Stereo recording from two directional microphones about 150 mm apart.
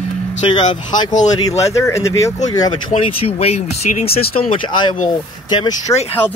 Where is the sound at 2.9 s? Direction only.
40° left (ahead or behind).